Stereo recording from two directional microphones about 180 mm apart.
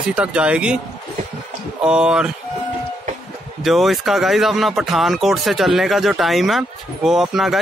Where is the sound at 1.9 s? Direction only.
5° right (ahead or behind).